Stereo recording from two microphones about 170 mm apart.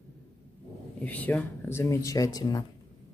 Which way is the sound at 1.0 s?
10° left (ahead or behind).